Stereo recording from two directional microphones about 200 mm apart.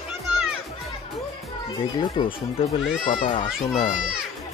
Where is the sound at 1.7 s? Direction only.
20° left (ahead or behind).